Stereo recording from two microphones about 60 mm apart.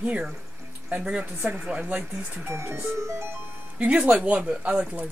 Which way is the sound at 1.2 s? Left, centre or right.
Right.